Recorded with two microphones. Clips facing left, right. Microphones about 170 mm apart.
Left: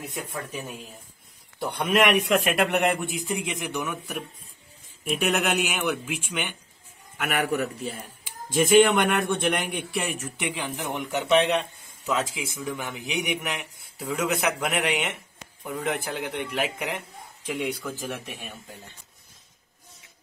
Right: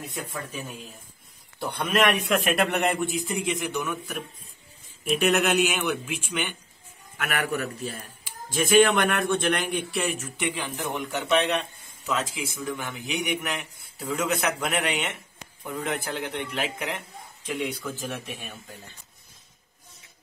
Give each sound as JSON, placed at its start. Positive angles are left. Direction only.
{"t": 1.6, "sound": "speech", "side_deg": 15}